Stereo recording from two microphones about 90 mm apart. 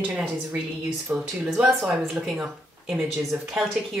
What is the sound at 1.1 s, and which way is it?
A woman's voice, 10° right (ahead or behind).